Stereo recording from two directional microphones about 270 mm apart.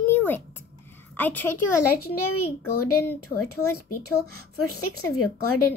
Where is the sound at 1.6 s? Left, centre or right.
Left.